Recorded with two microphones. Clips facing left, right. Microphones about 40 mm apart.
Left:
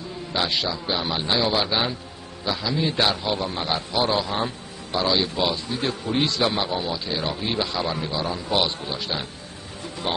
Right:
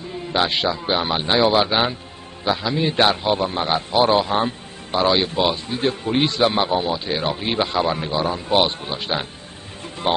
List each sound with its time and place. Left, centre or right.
0.3 s a man's voice: right